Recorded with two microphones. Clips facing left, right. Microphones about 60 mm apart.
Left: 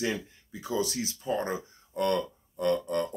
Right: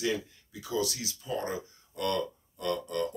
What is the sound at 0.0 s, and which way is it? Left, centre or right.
Speech, left.